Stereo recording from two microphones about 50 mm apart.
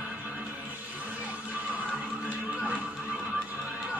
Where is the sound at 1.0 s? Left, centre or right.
Right.